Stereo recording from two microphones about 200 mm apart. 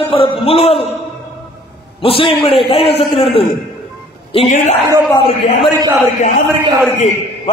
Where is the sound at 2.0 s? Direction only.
25° left (ahead or behind).